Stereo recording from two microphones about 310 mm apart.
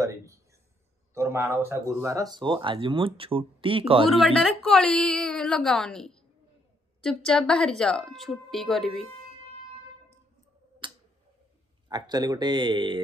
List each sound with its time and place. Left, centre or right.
0.0 s a sound: centre
1.1 s speech: centre
4.1 s a woman's voice: centre
10.8 s tick-tock: centre
11.9 s speech: centre